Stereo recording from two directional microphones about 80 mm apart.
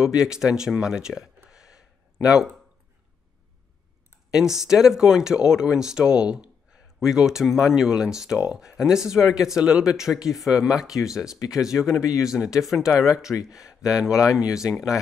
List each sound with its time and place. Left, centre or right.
0.0 s speech: centre
4.3 s speech: centre
11.3 s speech: left
11.6 s speech: centre